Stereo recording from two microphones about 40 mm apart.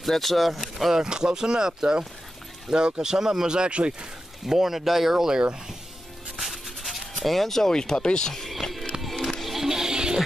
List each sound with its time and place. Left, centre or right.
0.0 s speech: centre
0.9 s speech: centre
4.5 s speech: centre
6.3 s music: centre
7.7 s speech: centre
9.0 s music: centre
9.6 s music: centre